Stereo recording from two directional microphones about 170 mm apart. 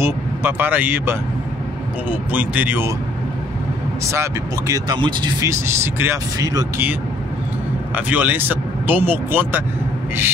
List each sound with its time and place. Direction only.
0.0 s speech: 15° right (ahead or behind)
4.0 s speech: 15° right (ahead or behind)
5.5 s speech: 15° right (ahead or behind)
7.9 s speech: 10° right (ahead or behind)